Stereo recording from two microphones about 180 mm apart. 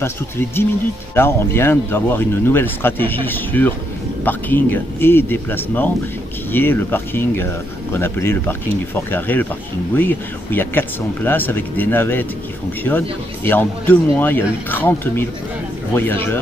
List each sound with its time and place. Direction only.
0.0 s speech: 15° left (ahead or behind)